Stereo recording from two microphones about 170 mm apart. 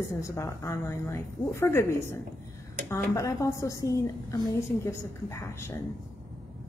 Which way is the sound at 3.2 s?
20° left (ahead or behind).